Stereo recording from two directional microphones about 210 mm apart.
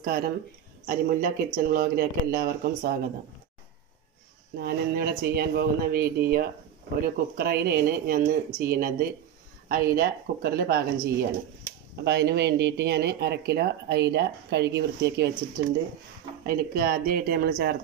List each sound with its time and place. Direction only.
0.0 s speech: 45° right (ahead or behind)
4.6 s speech: 45° right (ahead or behind)
16.4 s speech: 45° right (ahead or behind)